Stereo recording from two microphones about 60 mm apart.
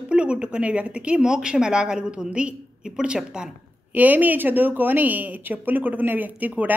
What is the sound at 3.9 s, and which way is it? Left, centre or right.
A woman's voice, right.